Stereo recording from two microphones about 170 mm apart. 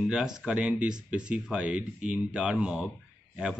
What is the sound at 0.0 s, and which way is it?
Speech, 5° right (ahead or behind).